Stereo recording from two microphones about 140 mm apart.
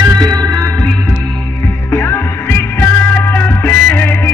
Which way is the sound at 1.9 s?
15° left (ahead or behind).